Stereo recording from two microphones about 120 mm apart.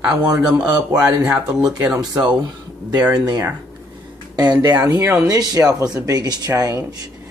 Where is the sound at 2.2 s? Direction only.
35° right (ahead or behind).